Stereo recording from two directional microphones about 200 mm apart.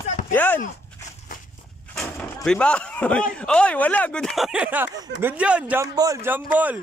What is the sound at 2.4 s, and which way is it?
A man's voice, 5° left (ahead or behind).